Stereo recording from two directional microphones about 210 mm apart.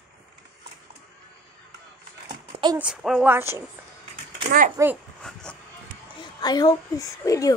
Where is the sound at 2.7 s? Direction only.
5° right (ahead or behind).